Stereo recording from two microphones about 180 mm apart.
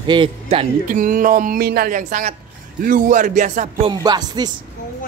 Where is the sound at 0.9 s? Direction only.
50° right (ahead or behind).